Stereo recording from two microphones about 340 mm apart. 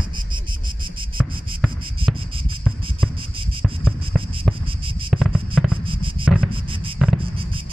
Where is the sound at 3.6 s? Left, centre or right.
Centre.